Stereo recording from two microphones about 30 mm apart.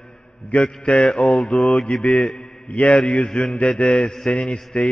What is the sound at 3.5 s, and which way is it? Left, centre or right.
Mantra, left.